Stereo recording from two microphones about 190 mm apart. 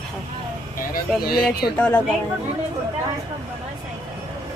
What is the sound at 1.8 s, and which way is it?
Speech, 5° left (ahead or behind).